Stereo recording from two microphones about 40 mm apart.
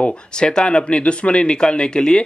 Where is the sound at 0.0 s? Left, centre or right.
Left.